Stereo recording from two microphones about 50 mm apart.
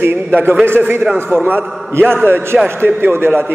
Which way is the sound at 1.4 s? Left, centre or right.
Right.